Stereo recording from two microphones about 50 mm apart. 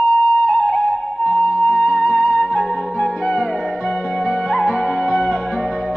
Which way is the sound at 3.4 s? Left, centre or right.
Left.